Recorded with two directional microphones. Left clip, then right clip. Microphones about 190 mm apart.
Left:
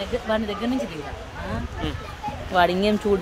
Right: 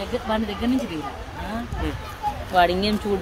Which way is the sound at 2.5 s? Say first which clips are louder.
Even; 50° left (ahead or behind).